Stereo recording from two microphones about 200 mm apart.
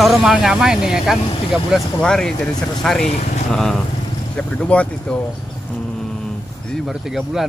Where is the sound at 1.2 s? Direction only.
30° left (ahead or behind).